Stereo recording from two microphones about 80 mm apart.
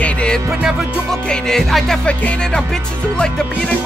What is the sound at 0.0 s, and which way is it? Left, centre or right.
Music, centre.